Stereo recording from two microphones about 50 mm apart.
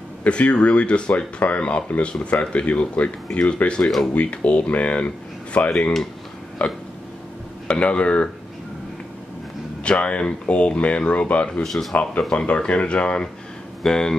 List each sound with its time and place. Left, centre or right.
0.2 s speech: left
9.8 s speech: left
11.6 s speech: centre
11.9 s speech: centre